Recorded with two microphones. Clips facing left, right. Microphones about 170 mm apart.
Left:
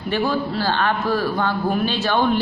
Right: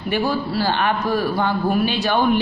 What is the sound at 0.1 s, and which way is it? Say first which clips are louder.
A man's voice: even; 15° right (ahead or behind).